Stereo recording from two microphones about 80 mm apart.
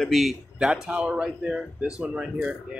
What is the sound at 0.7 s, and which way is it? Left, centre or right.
Speech, centre.